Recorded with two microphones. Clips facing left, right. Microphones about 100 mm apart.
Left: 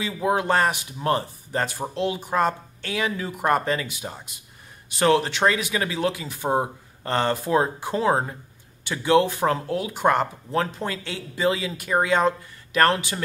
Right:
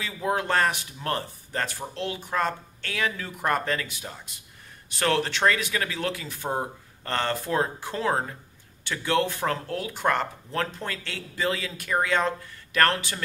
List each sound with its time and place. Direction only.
0.0 s speech: 10° left (ahead or behind)